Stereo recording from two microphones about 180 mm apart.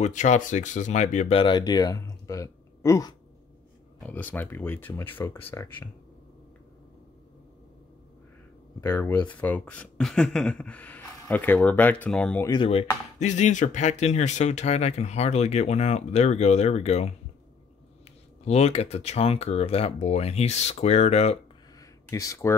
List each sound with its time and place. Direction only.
0.0 s speech: 40° left (ahead or behind)
1.4 s speech: 25° left (ahead or behind)
8.8 s speech: 15° left (ahead or behind)
12.4 s speech: 30° left (ahead or behind)
18.4 s speech: 35° left (ahead or behind)
21.7 s a sound: 20° left (ahead or behind)